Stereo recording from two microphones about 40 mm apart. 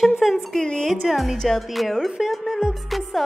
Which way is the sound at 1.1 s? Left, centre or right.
Centre.